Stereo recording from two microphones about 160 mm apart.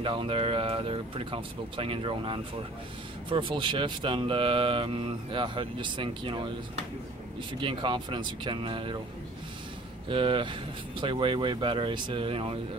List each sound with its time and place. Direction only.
0.0 s speech: 30° right (ahead or behind)
7.6 s speech: 30° right (ahead or behind)
10.0 s speech: 30° right (ahead or behind)